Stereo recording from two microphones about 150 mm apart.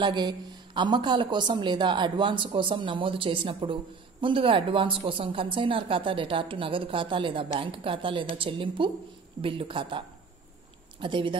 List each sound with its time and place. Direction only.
0.0 s a woman's voice: 30° right (ahead or behind)